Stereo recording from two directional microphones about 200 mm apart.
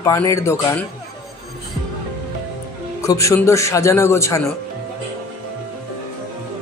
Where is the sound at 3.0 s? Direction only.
15° left (ahead or behind).